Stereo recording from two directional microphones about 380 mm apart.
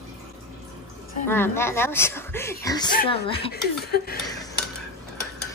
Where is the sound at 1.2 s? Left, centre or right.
Centre.